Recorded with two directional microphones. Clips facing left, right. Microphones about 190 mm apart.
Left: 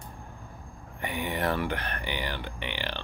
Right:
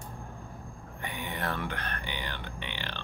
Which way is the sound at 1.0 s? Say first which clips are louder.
Left 6 dB; 15° left (ahead or behind).